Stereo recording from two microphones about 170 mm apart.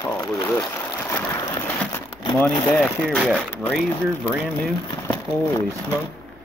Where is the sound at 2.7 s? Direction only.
5° left (ahead or behind).